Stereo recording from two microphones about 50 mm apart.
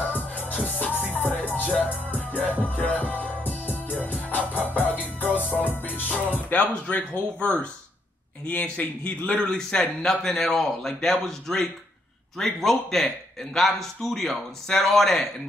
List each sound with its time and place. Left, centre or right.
0.0 s music: left
6.0 s speech: left
9.0 s a man's voice: left
9.4 s a man's voice: centre